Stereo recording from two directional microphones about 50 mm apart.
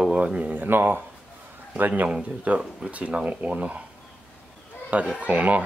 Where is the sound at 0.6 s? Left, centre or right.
Right.